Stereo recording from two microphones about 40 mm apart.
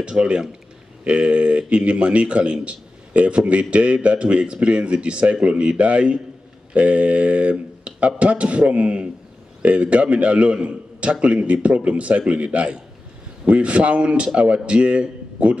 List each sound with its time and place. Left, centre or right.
0.0 s a man's voice: right